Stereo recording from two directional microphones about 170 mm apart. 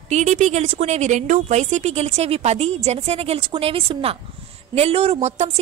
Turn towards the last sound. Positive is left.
turn(degrees=-40)  # may be behind; listen again after turning